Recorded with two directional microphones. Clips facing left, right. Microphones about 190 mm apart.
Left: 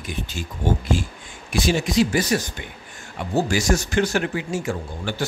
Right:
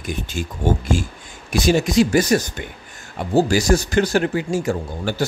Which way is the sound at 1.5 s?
40° right (ahead or behind).